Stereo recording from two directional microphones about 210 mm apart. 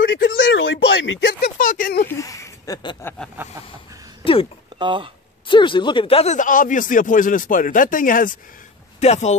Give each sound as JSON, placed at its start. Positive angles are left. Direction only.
{"t": 0.0, "sound": "speech", "side_deg": 60}
{"t": 1.6, "sound": "speech", "side_deg": 40}
{"t": 2.0, "sound": "speech", "side_deg": 15}
{"t": 3.4, "sound": "a sound", "side_deg": -10}
{"t": 4.2, "sound": "a sound", "side_deg": 25}
{"t": 4.7, "sound": "speech", "side_deg": -25}
{"t": 5.5, "sound": "speech", "side_deg": 20}